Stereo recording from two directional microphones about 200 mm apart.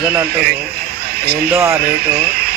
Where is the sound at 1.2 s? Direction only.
50° right (ahead or behind).